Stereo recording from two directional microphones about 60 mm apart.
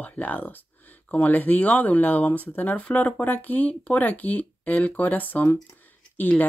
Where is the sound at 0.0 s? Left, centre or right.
Left.